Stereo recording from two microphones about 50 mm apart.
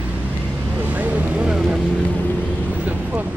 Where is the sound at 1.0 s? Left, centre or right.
Right.